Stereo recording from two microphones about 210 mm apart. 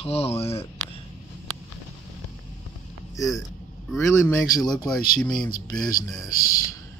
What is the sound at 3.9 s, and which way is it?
Speech, 15° left (ahead or behind).